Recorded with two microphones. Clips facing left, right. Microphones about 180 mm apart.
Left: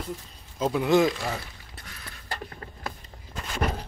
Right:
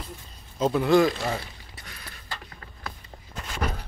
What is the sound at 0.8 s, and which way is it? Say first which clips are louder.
Speech: right 1 dB; 20° left (ahead or behind).